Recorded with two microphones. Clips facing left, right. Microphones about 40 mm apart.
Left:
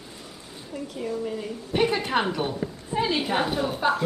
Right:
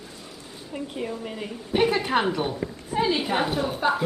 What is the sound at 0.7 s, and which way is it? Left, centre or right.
Speech, right.